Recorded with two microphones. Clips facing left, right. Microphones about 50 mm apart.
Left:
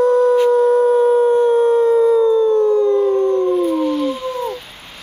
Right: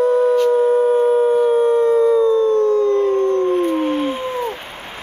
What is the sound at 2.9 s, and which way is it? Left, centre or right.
Howl, right.